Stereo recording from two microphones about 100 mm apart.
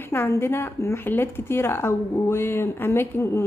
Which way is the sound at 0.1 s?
20° left (ahead or behind).